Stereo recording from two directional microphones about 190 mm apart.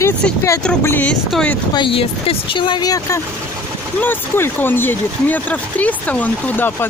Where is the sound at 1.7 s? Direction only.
25° left (ahead or behind).